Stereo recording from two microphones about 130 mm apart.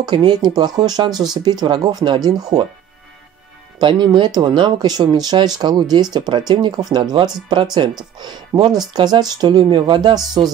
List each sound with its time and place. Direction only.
0.0 s speech: 35° right (ahead or behind)
3.8 s speech: 35° right (ahead or behind)